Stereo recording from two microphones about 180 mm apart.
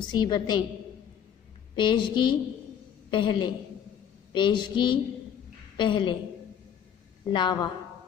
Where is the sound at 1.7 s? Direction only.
25° left (ahead or behind).